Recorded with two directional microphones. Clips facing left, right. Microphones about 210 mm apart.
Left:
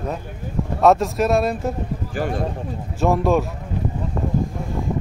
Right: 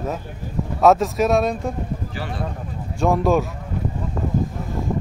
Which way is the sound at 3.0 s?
Centre (ahead or behind).